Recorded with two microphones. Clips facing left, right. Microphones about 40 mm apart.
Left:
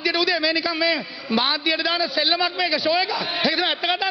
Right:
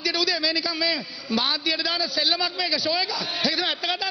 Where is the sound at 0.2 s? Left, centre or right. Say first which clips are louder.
Left 4 dB; centre.